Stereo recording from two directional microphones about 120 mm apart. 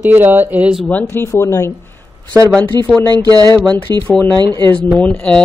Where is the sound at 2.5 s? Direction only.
5° left (ahead or behind).